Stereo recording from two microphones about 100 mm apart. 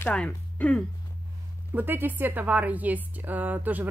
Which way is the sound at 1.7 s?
20° right (ahead or behind).